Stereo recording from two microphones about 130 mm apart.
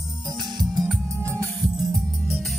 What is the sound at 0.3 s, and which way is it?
Music, 35° right (ahead or behind).